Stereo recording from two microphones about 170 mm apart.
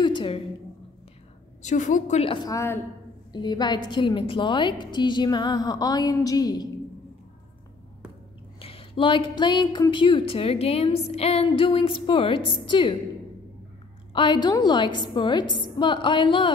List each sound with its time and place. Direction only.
0.0 s a sound: 30° left (ahead or behind)
1.6 s a woman's voice: 45° left (ahead or behind); by 6.7 s 20° left (ahead or behind)
8.5 s speech: 35° left (ahead or behind)
14.1 s a woman's voice: 30° left (ahead or behind)